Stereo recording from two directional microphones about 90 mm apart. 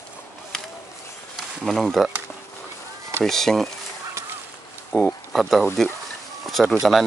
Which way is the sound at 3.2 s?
5° left (ahead or behind).